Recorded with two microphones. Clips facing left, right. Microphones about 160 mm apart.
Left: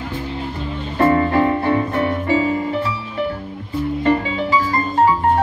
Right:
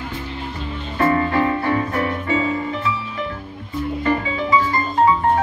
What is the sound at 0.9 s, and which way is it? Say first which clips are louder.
Music: left 3 dB; 30° left (ahead or behind).